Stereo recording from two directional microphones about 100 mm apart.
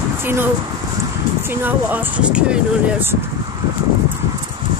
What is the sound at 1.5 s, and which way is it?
Speech, 20° right (ahead or behind).